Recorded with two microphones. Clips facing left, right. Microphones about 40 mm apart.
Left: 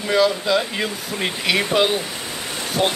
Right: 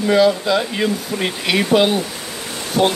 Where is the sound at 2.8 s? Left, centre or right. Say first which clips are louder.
Right 4 dB; centre.